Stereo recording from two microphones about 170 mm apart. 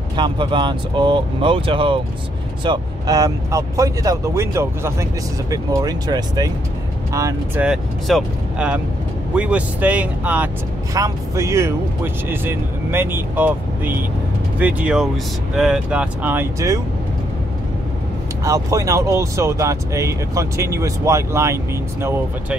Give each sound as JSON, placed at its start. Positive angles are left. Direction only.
{"t": 0.1, "sound": "speech", "side_deg": -30}
{"t": 7.6, "sound": "speech", "side_deg": -5}
{"t": 18.4, "sound": "speech", "side_deg": -20}